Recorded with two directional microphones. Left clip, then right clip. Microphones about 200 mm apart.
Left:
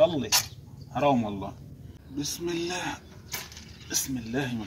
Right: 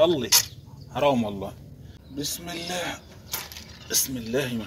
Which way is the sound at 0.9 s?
45° right (ahead or behind).